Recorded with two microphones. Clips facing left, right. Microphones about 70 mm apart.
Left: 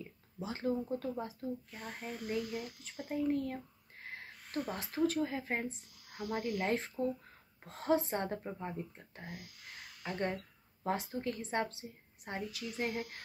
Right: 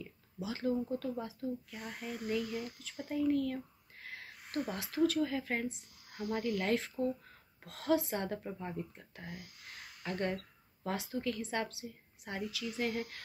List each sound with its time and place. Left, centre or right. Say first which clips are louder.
0.0 s speech: right 1 dB; left